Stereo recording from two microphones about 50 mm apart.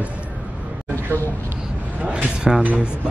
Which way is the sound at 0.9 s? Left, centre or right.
Left.